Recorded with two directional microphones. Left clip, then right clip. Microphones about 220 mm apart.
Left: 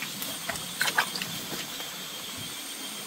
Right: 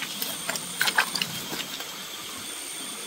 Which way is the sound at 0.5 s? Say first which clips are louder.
Right 3 dB; 30° right (ahead or behind).